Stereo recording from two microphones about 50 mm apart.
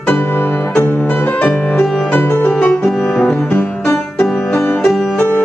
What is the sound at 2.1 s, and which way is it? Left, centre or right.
Music, left.